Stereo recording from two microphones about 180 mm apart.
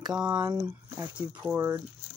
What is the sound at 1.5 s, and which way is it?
Speech, 15° right (ahead or behind).